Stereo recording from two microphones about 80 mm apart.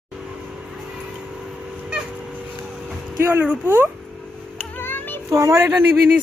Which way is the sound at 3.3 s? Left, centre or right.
Right.